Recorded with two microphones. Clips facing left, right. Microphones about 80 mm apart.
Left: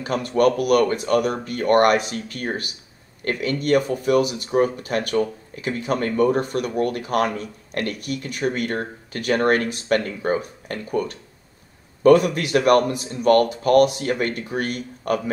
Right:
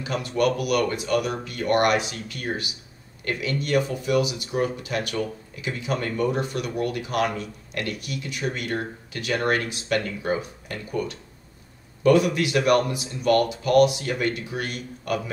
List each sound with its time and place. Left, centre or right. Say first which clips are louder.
0.0 s speech: left 5 dB; left